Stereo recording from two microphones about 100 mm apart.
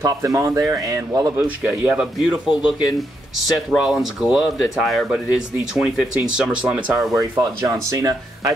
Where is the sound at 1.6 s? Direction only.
10° right (ahead or behind).